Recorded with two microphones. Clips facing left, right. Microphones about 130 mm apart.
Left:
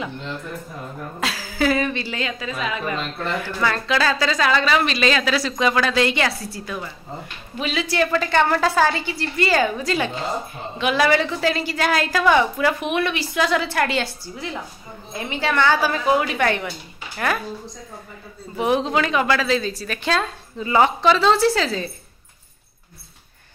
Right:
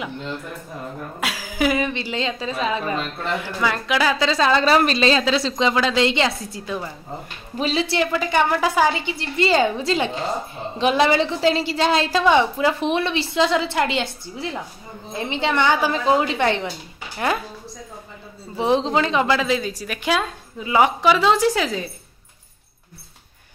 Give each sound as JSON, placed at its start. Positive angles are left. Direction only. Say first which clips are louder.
{"t": 1.2, "sound": "a woman's voice", "louder": "even", "side_deg": -15}
{"t": 3.4, "sound": "a woman's voice", "louder": "left 1 dB", "side_deg": -15}
{"t": 8.0, "sound": "a woman's voice", "louder": "left 3 dB", "side_deg": -15}
{"t": 18.7, "sound": "a woman's voice", "louder": "right 1 dB", "side_deg": -25}